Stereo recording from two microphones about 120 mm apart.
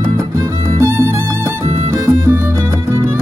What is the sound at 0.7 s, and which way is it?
Music, 20° right (ahead or behind).